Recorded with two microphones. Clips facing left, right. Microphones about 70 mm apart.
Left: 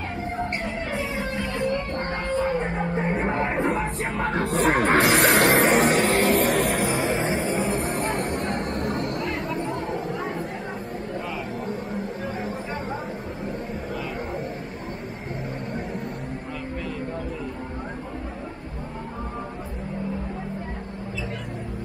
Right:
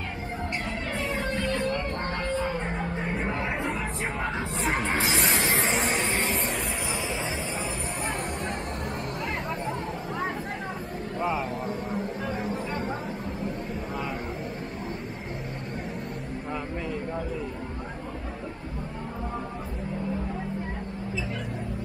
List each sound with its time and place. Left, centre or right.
0.9 s music: centre
2.8 s music: centre
3.3 s music: left
4.3 s music: left
6.1 s music: centre
6.4 s music: left
8.0 s a sound: centre
9.2 s music: centre
11.6 s a sound: centre